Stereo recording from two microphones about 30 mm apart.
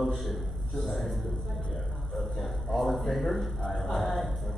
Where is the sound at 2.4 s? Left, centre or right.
Centre.